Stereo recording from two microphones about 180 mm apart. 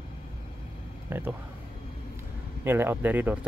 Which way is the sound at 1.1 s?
15° right (ahead or behind).